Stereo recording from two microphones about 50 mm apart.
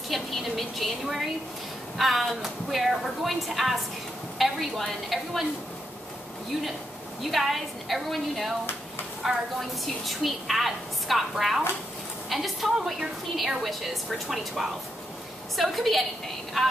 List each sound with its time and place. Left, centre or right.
0.1 s a woman's voice: centre
7.2 s a woman's voice: centre